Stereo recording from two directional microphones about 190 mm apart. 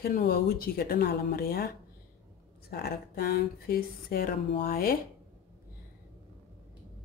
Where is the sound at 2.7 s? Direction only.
55° left (ahead or behind).